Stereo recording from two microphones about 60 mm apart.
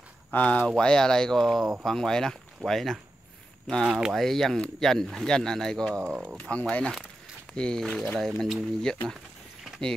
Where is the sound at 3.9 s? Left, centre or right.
Centre.